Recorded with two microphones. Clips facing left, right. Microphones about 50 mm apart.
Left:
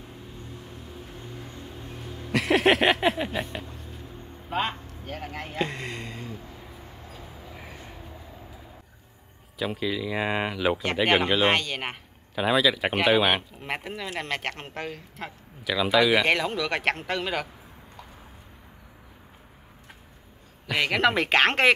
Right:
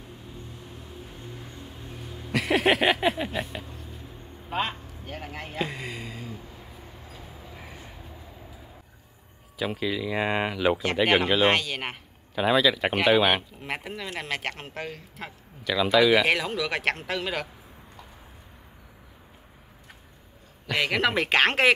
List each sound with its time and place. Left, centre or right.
2.3 s speech: centre
7.4 s train: centre
9.6 s speech: centre
20.6 s speech: centre